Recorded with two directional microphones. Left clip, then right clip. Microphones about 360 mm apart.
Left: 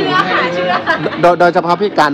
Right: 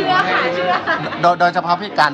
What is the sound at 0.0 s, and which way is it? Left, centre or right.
Chatter, centre.